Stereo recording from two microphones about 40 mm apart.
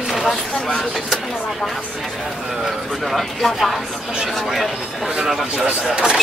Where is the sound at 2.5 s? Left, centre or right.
Centre.